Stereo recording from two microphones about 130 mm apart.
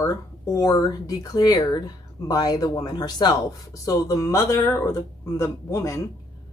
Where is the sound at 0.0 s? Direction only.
25° left (ahead or behind).